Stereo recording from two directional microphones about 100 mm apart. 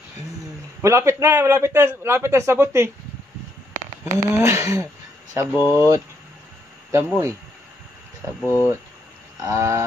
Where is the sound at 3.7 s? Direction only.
30° right (ahead or behind).